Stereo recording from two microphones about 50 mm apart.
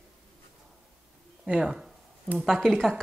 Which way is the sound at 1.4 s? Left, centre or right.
Centre.